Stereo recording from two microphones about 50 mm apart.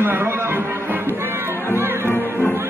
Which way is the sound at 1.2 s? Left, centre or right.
Right.